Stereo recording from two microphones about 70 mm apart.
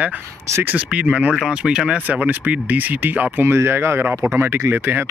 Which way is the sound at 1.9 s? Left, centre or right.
Right.